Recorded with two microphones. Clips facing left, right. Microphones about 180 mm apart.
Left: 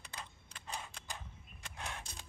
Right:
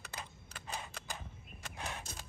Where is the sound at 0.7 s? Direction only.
5° right (ahead or behind).